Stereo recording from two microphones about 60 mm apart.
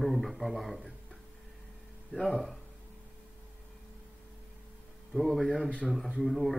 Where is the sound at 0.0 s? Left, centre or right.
Centre.